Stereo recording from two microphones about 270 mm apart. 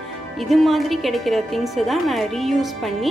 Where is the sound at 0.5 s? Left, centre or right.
Centre.